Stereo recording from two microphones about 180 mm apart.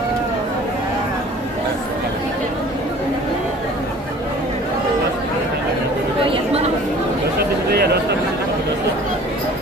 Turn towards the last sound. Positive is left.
turn(degrees=-65)  # may be behind; listen again after turning